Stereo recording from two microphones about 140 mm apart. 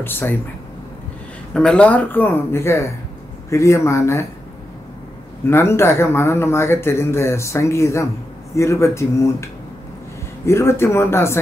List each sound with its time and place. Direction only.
0.0 s speech: 15° left (ahead or behind)
1.5 s speech: 5° left (ahead or behind)
5.5 s speech: 20° left (ahead or behind)
10.4 s speech: 20° left (ahead or behind)